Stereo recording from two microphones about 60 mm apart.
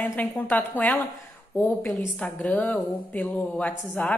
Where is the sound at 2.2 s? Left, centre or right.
Left.